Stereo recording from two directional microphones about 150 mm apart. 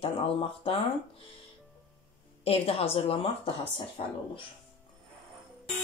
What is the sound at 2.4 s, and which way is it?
Speech, 40° left (ahead or behind).